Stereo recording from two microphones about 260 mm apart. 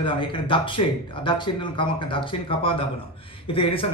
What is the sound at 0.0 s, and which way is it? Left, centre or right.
Speech, centre.